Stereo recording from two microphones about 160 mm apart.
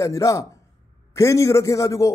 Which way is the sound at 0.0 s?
20° left (ahead or behind).